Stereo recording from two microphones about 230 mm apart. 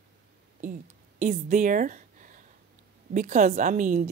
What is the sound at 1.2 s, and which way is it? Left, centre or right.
A woman's voice, right.